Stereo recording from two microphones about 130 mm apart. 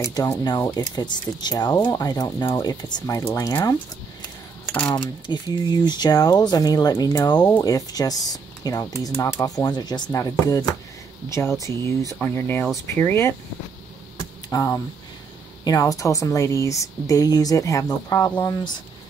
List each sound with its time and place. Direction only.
0.0 s speech: 30° left (ahead or behind)
4.9 s speech: 35° left (ahead or behind); by 13.3 s 20° left (ahead or behind)
14.1 s a sound: 25° left (ahead or behind)
15.6 s speech: 30° left (ahead or behind)